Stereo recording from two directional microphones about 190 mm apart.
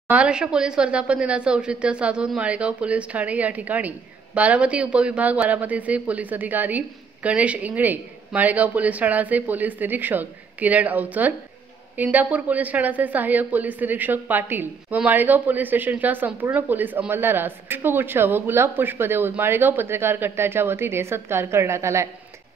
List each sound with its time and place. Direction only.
0.1 s a woman's voice: 5° right (ahead or behind)